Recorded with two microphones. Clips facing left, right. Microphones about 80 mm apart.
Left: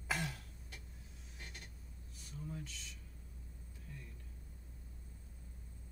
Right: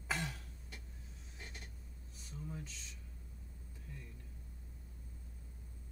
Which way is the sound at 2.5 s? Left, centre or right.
Right.